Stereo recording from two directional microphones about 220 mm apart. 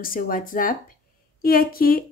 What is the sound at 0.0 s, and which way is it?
A woman's voice, 40° left (ahead or behind).